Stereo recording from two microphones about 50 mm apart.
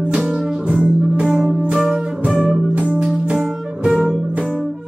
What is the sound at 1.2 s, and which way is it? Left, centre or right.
Music, centre.